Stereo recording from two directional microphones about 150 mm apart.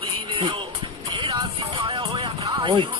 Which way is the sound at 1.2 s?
35° right (ahead or behind).